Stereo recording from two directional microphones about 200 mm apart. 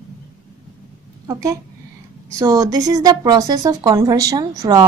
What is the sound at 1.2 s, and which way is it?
A woman's voice, 15° right (ahead or behind).